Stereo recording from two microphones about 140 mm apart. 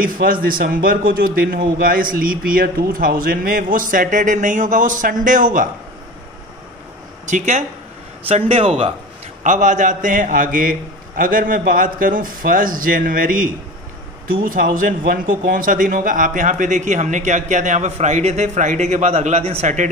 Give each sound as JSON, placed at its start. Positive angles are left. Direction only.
{"t": 0.0, "sound": "a man's voice", "side_deg": -90}
{"t": 7.2, "sound": "a man's voice", "side_deg": -60}
{"t": 8.3, "sound": "speech", "side_deg": -45}
{"t": 9.4, "sound": "a man's voice", "side_deg": -60}